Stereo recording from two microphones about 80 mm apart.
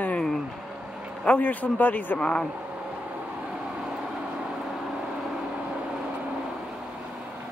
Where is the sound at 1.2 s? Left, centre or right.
Centre.